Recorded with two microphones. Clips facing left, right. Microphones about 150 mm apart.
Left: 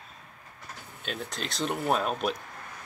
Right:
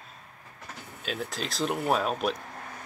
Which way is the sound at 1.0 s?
Centre (ahead or behind).